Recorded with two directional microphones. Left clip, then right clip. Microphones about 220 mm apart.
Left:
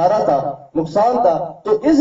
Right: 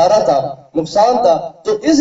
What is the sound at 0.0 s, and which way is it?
A man's voice, 40° right (ahead or behind).